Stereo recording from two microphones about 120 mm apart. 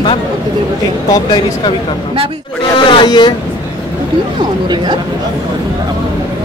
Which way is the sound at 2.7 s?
40° left (ahead or behind).